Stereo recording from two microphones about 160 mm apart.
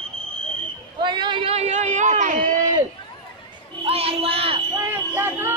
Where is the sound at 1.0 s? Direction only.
30° right (ahead or behind); by 2.5 s 55° right (ahead or behind).